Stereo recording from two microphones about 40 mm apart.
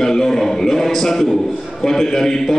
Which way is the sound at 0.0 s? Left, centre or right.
Centre.